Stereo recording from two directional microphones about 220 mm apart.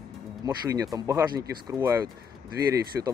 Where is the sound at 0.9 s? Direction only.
15° right (ahead or behind).